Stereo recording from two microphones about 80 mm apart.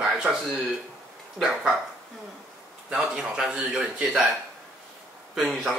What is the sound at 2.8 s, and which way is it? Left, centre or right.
Speech, centre.